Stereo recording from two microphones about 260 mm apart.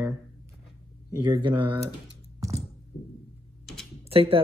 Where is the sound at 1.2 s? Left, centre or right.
Centre.